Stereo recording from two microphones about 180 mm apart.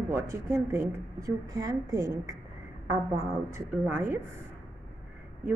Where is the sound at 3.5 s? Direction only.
15° right (ahead or behind).